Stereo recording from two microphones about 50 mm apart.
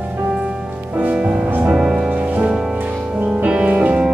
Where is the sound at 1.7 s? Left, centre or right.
Centre.